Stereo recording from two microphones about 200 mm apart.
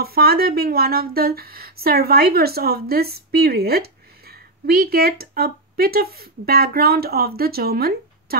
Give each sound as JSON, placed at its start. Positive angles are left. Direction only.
{"t": 0.0, "sound": "speech", "side_deg": -50}